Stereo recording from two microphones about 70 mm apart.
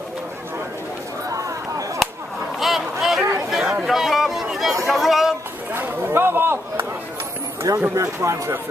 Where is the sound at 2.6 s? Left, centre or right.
Centre.